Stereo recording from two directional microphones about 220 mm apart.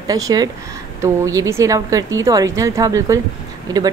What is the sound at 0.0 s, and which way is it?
Speech, 15° right (ahead or behind).